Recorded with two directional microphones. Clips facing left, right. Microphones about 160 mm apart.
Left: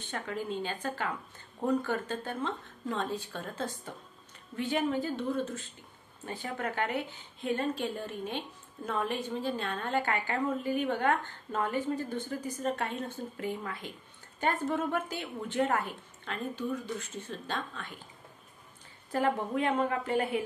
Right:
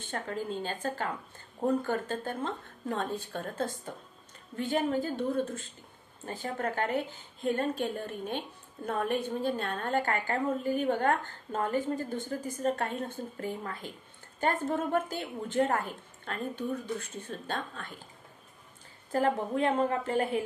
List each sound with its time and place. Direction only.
0.0 s a woman's voice: 45° right (ahead or behind)
5.0 s a woman's voice: 50° right (ahead or behind)
6.2 s a woman's voice: 40° right (ahead or behind)
19.1 s speech: 35° right (ahead or behind)